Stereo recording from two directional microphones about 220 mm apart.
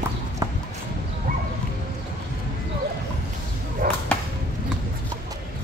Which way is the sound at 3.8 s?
40° right (ahead or behind).